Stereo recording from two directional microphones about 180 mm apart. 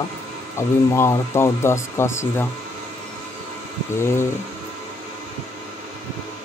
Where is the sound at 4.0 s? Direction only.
15° left (ahead or behind).